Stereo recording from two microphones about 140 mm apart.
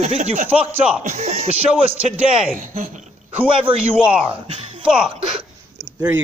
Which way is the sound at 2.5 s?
75° right (ahead or behind).